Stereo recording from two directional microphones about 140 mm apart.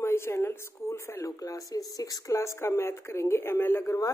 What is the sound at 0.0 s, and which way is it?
Speech, 20° left (ahead or behind).